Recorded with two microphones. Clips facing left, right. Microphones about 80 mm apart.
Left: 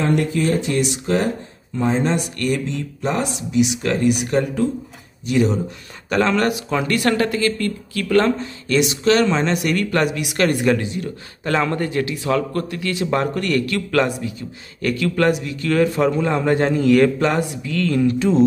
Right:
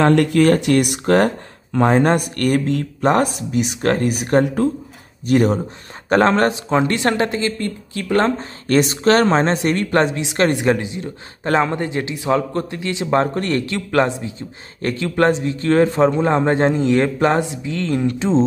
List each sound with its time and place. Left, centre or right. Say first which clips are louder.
0.0 s a man's voice: right 6 dB; right